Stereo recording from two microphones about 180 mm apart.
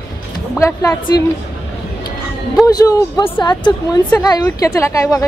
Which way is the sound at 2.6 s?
20° left (ahead or behind).